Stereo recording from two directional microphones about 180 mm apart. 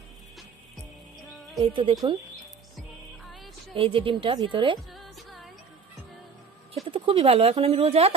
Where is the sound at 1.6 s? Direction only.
30° right (ahead or behind).